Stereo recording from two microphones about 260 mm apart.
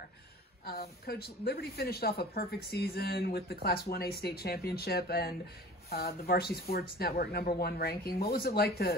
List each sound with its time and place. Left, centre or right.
0.7 s a woman's voice: left